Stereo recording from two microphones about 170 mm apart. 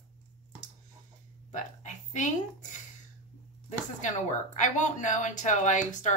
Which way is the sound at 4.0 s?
45° left (ahead or behind).